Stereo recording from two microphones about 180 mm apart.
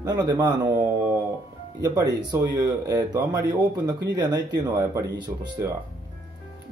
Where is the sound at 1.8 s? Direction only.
20° right (ahead or behind).